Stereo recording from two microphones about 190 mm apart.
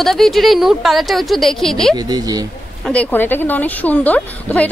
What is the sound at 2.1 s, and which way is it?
Speech, 20° right (ahead or behind).